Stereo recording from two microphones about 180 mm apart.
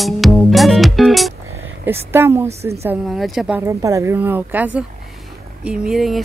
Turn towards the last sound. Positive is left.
turn(degrees=0)  # may be behind; listen again after turning